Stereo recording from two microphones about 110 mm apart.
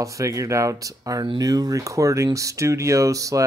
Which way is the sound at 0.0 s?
30° right (ahead or behind).